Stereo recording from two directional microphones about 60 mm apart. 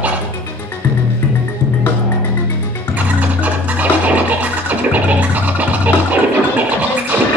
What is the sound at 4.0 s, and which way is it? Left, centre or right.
Music, right.